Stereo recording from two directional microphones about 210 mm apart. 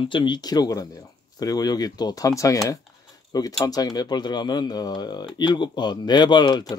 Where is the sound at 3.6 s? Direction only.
15° left (ahead or behind).